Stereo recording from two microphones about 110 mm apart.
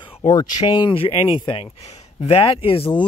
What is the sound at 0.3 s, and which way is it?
Speech, 35° left (ahead or behind).